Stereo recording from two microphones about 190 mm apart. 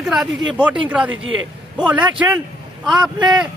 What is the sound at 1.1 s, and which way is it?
Speech, 90° right.